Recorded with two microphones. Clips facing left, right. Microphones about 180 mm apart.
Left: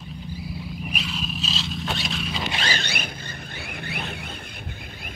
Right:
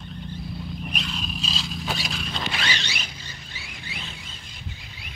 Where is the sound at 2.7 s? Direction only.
55° left (ahead or behind).